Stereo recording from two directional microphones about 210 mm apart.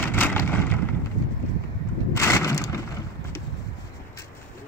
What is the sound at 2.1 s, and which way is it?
Wood, 15° left (ahead or behind).